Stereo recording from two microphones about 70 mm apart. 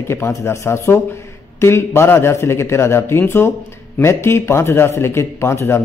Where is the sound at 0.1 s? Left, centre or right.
Left.